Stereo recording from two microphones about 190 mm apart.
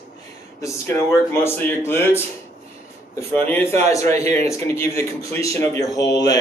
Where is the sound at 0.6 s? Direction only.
15° left (ahead or behind).